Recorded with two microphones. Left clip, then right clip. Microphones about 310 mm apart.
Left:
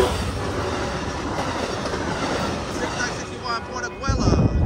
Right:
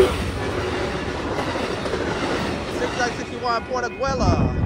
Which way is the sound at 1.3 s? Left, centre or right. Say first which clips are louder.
Right 1 dB; left.